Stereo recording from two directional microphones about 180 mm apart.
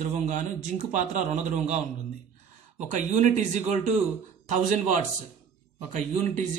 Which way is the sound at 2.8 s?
40° right (ahead or behind).